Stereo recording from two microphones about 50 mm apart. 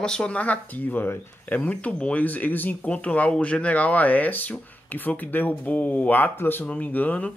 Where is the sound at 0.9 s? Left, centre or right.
Left.